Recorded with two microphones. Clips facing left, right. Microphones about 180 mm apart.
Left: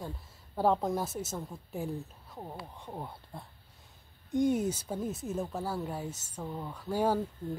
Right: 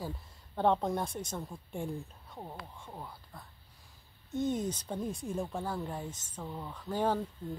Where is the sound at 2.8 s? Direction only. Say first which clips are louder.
Left 4 dB; 25° left (ahead or behind).